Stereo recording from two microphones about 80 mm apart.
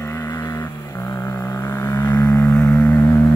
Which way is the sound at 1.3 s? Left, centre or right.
Left.